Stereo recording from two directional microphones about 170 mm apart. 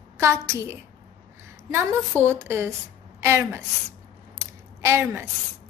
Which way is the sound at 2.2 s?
15° right (ahead or behind).